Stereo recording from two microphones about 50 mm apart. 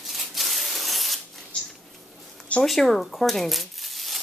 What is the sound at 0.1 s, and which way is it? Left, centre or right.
Rub, centre.